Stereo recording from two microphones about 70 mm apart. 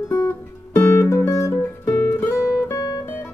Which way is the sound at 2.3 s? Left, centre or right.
Left.